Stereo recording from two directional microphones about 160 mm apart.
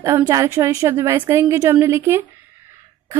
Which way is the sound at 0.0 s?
20° right (ahead or behind).